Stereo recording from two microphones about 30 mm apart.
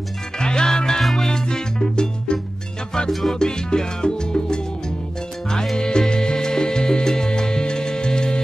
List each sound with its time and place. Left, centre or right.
0.4 s music: left
3.1 s music: centre
3.3 s salsa music: left
5.8 s music: left